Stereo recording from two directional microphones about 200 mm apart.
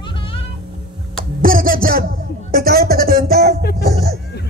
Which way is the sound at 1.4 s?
45° right (ahead or behind).